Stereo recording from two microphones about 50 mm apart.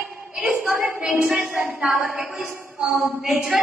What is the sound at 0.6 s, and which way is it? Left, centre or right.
Speech, right.